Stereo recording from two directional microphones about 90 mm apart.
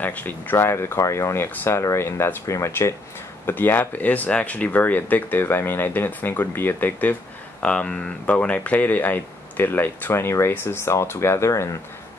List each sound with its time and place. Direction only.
0.0 s speech: 20° left (ahead or behind)
3.4 s speech: 20° left (ahead or behind)